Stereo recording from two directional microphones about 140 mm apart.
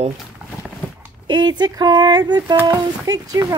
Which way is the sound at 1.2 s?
30° right (ahead or behind).